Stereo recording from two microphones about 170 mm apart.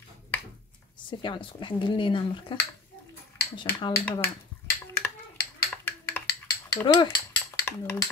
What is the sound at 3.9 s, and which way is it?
Speech, 15° left (ahead or behind).